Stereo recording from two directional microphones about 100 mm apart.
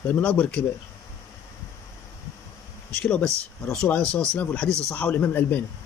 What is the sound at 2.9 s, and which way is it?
Speech, 10° left (ahead or behind).